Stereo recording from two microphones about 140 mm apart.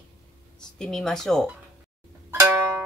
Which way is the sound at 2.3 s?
20° right (ahead or behind).